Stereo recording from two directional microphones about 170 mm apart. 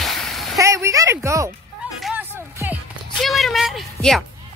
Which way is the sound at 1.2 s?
15° right (ahead or behind).